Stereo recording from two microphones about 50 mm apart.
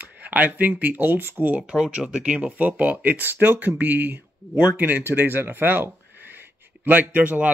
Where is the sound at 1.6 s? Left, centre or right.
Centre.